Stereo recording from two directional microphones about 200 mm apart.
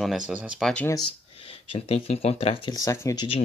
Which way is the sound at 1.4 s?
30° left (ahead or behind).